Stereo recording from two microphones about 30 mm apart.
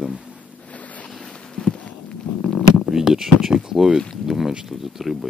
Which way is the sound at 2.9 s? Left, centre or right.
Centre.